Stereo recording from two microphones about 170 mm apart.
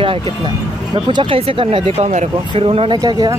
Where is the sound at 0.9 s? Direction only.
30° right (ahead or behind).